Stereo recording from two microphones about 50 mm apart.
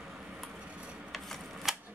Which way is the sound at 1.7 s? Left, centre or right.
Centre.